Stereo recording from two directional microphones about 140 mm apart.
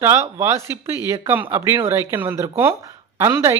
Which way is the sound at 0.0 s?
20° right (ahead or behind).